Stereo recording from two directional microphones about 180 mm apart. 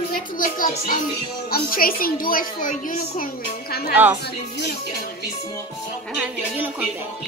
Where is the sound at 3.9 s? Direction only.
10° right (ahead or behind).